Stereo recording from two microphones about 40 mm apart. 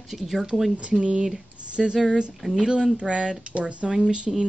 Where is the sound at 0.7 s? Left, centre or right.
Right.